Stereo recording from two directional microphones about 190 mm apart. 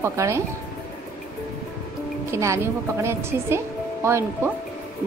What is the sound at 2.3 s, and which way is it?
A woman's voice, 15° right (ahead or behind).